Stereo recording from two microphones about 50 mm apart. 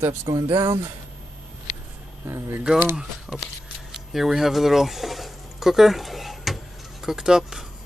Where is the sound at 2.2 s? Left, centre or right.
Right.